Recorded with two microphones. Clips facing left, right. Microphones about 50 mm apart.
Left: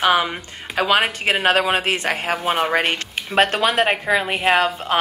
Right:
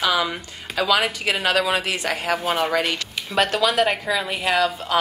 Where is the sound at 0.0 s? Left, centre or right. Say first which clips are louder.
Left 4 dB; left.